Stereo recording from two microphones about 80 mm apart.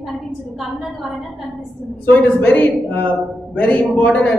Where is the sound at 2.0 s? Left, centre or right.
Centre.